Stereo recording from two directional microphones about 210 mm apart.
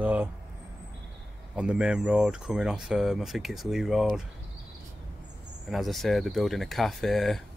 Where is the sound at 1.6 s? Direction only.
5° right (ahead or behind).